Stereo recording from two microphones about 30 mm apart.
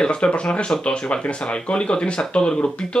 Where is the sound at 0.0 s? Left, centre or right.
Left.